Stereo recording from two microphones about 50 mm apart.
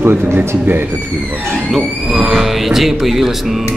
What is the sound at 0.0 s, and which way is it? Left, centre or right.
Speech, right.